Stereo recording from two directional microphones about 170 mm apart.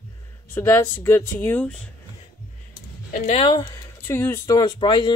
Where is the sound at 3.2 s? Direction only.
35° left (ahead or behind).